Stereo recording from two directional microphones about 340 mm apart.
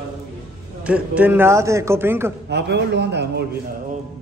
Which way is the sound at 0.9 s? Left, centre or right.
Centre.